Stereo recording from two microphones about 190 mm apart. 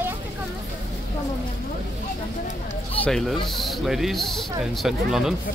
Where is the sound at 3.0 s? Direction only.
Centre (ahead or behind).